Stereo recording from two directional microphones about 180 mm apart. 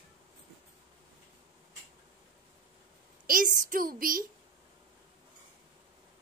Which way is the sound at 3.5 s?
50° right (ahead or behind).